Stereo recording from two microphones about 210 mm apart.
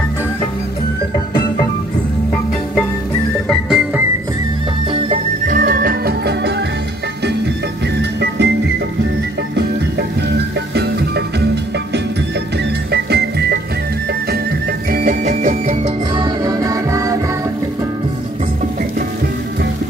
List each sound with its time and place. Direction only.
3.4 s music: centre (ahead or behind)
4.9 s music: 35° right (ahead or behind); by 6.5 s 50° right (ahead or behind)
8.0 s music: 55° right (ahead or behind)
10.7 s music: 50° right (ahead or behind)
12.9 s music: 50° right (ahead or behind)
14.9 s music: 40° right (ahead or behind)
16.3 s music: 15° right (ahead or behind)